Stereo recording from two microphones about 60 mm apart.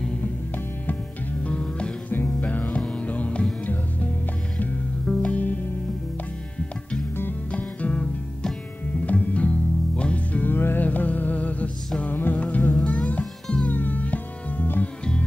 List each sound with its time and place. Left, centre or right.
1.4 s music: centre
2.0 s music: left
2.6 s music: centre
5.0 s music: centre
5.3 s music: left
7.5 s music: left